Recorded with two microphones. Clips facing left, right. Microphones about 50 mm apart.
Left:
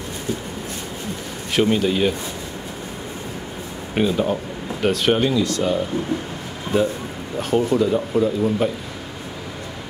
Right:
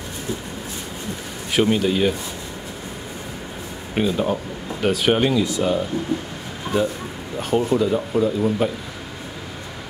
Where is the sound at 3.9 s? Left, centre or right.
Centre.